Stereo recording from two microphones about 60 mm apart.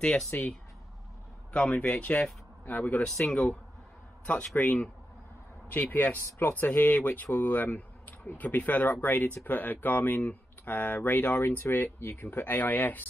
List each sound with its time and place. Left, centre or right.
0.0 s speech: centre
0.3 s speech: left
3.1 s speech: centre
4.6 s speech: left